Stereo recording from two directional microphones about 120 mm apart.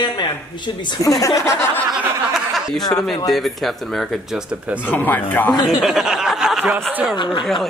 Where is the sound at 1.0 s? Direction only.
30° left (ahead or behind).